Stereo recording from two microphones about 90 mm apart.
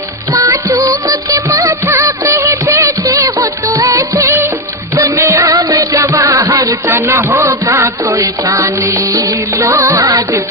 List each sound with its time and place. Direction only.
0.3 s music: 40° right (ahead or behind)